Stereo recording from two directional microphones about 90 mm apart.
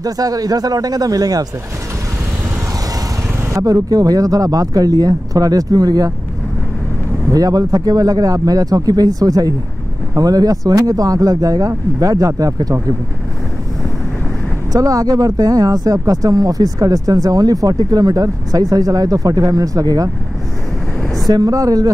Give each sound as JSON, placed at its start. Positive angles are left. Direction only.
{"t": 0.0, "sound": "speech", "side_deg": -45}
{"t": 3.5, "sound": "speech", "side_deg": -35}
{"t": 7.2, "sound": "speech", "side_deg": -40}
{"t": 14.7, "sound": "speech", "side_deg": -40}
{"t": 21.3, "sound": "speech", "side_deg": -40}